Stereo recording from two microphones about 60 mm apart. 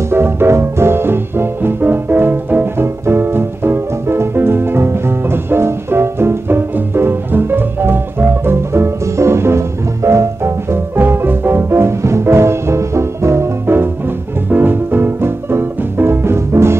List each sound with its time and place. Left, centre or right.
0.1 s music: right